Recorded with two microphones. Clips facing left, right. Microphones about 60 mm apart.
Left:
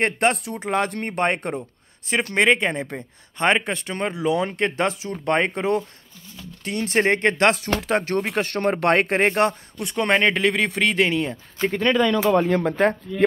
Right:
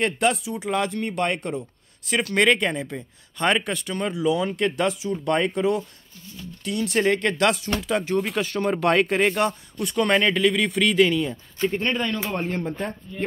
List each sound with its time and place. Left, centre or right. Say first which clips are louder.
0.0 s speech: left 1 dB; left
2.1 s speech: left 1 dB; left
2.8 s speech: left 2 dB; left
3.4 s speech: left 2 dB; left
7.1 s speech: left 3 dB; left
8.0 s speech: left 1 dB; left
9.8 s speech: even; left
11.6 s speech: left 4 dB; left